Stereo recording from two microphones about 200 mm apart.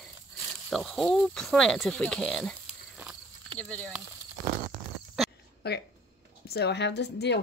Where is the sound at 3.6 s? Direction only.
5° left (ahead or behind).